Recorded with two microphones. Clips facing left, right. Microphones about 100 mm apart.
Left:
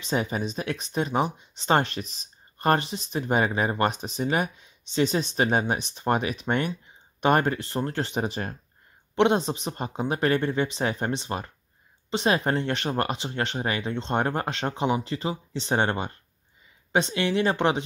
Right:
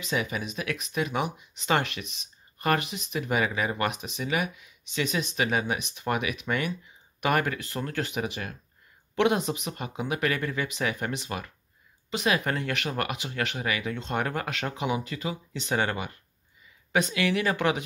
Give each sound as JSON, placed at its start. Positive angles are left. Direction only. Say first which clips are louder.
{"t": 0.0, "sound": "speech", "louder": "left 3 dB", "side_deg": 35}